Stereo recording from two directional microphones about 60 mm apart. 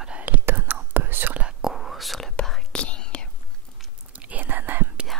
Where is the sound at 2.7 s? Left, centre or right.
Centre.